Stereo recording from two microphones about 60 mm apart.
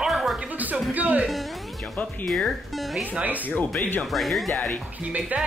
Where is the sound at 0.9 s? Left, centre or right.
Right.